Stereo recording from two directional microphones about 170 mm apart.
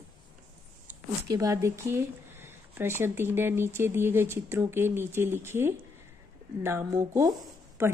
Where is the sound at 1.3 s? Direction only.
20° right (ahead or behind).